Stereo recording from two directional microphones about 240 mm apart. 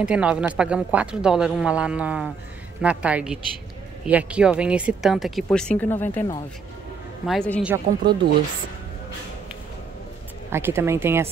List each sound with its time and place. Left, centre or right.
0.0 s speech: centre
7.2 s speech: centre
7.6 s speech: centre
10.5 s speech: centre